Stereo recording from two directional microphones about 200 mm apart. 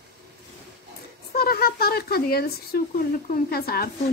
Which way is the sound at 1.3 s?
50° left (ahead or behind).